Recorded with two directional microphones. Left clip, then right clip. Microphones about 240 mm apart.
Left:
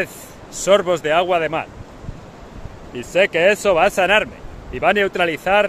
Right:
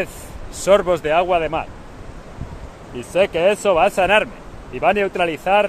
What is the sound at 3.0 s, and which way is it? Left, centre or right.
Speech, centre.